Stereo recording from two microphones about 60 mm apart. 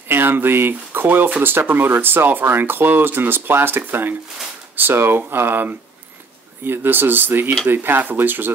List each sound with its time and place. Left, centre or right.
0.1 s speech: right